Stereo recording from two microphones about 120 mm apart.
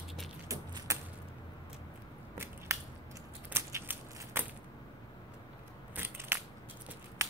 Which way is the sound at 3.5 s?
20° right (ahead or behind).